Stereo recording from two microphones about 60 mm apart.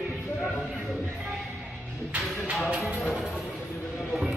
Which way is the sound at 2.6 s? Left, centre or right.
Right.